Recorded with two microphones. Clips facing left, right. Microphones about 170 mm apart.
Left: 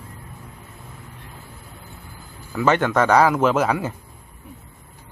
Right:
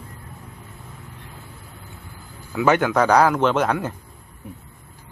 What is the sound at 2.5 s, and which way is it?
Speech, 5° right (ahead or behind).